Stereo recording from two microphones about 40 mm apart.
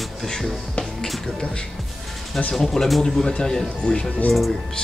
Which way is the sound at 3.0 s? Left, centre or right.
Centre.